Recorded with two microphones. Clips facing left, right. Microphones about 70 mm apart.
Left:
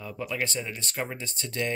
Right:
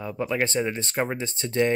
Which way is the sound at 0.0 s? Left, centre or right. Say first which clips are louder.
Right 6 dB; right.